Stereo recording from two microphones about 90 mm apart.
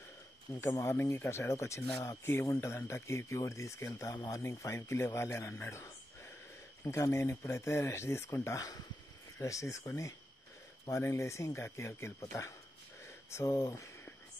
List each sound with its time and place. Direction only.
0.6 s speech: 30° left (ahead or behind)